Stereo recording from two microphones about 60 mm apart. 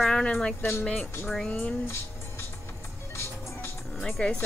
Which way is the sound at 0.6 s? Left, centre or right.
Left.